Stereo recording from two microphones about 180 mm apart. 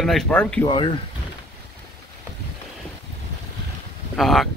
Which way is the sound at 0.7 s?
25° left (ahead or behind).